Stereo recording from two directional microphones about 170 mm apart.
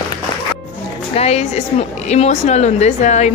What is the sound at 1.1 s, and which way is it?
A woman's voice, 40° left (ahead or behind).